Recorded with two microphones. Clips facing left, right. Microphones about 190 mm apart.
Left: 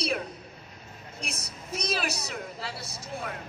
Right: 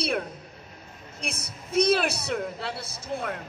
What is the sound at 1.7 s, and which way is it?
A woman's voice, 55° right (ahead or behind).